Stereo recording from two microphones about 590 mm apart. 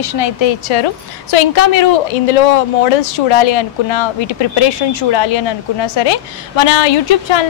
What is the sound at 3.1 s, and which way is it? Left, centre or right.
Speech, left.